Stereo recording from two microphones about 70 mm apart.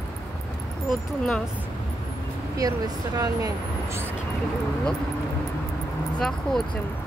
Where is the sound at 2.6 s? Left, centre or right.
Right.